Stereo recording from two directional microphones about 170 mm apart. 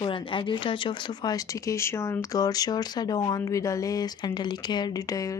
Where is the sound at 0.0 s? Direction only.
30° left (ahead or behind).